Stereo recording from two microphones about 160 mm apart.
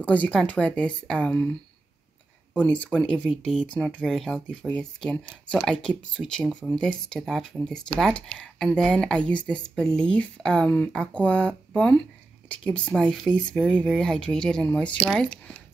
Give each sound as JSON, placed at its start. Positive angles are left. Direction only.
{"t": 0.0, "sound": "speech", "side_deg": 10}
{"t": 2.5, "sound": "speech", "side_deg": 5}